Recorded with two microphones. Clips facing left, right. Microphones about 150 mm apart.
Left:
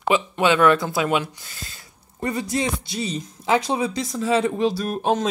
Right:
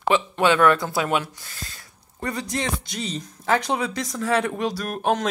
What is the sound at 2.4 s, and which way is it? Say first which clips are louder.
Speech: left 3 dB; 10° left (ahead or behind).